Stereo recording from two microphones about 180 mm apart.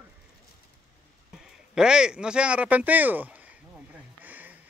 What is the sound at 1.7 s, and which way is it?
Speech, 5° right (ahead or behind).